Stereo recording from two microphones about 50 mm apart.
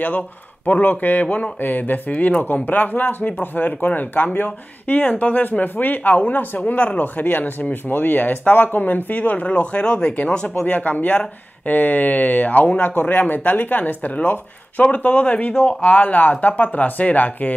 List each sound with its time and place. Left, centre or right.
0.7 s speech: left; by 10.5 s centre
10.7 s speech: left